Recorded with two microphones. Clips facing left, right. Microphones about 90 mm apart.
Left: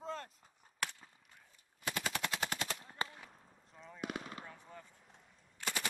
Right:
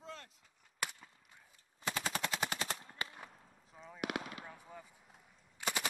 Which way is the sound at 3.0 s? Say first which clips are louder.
Left 6 dB; 30° left (ahead or behind).